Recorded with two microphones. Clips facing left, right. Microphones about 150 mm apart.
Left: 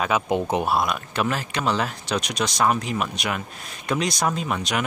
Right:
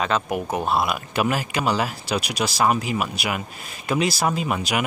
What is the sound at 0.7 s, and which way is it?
Speech, 5° right (ahead or behind).